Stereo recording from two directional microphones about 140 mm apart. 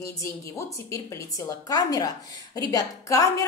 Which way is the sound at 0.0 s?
20° left (ahead or behind).